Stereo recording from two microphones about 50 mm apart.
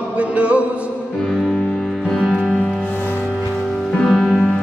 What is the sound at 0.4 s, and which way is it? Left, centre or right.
Music, right.